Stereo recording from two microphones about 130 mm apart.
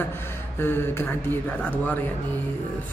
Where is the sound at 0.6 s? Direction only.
15° left (ahead or behind).